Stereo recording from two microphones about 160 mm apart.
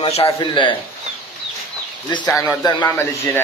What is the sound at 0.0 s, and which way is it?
Speech, 35° left (ahead or behind).